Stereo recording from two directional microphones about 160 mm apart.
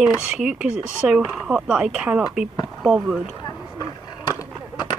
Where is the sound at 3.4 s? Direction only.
25° left (ahead or behind).